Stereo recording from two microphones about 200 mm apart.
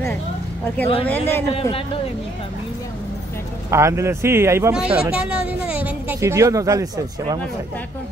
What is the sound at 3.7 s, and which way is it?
A woman's voice, 15° right (ahead or behind).